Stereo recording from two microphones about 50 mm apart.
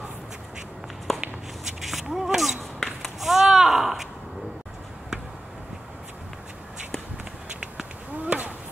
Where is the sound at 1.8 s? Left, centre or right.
Centre.